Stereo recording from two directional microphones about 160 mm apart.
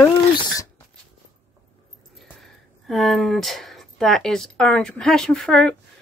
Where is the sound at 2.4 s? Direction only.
Centre (ahead or behind).